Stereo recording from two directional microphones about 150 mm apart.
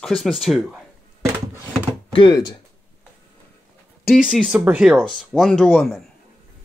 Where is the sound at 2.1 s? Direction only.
30° left (ahead or behind).